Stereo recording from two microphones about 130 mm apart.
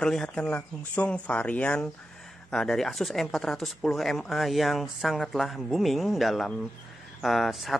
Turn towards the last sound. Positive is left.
turn(degrees=0)  # may be behind; listen again after turning